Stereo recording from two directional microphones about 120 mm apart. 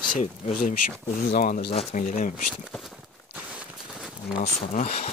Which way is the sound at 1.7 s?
60° left (ahead or behind).